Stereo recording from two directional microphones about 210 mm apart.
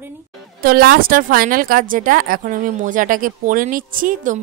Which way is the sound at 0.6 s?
45° right (ahead or behind).